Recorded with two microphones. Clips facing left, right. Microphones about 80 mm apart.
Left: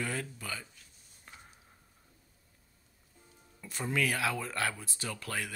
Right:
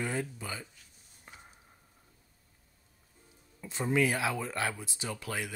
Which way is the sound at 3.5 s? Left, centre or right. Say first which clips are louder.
Right 4 dB; right.